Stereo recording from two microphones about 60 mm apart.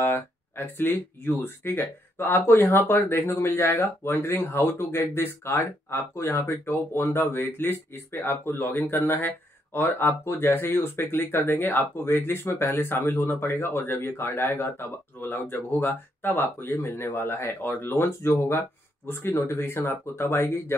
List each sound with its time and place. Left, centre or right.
0.0 s speech: left